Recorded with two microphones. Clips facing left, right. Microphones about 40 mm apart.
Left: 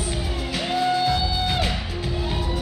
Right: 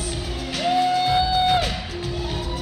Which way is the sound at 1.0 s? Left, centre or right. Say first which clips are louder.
Right 4 dB; centre.